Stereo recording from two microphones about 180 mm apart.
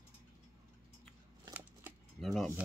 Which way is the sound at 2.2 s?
Centre (ahead or behind).